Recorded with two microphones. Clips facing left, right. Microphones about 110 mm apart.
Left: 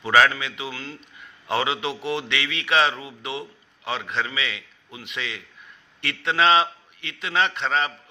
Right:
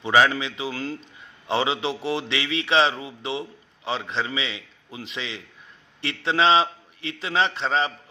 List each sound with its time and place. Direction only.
0.0 s a man's voice: 20° right (ahead or behind); by 0.9 s 35° right (ahead or behind)
1.5 s a man's voice: 25° right (ahead or behind)